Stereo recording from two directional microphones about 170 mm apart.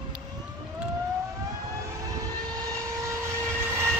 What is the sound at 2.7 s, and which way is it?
Vehicle, 15° right (ahead or behind).